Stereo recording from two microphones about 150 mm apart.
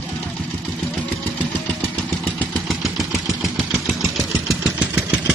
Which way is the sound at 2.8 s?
Centre (ahead or behind).